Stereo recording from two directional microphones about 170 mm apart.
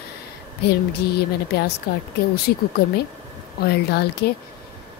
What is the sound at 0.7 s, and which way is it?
Music, 70° left (ahead or behind).